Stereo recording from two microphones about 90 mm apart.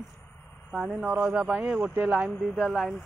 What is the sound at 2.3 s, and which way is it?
Speech, centre (ahead or behind).